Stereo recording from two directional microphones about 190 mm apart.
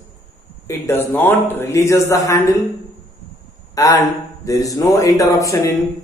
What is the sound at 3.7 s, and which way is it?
A man's voice, 20° left (ahead or behind).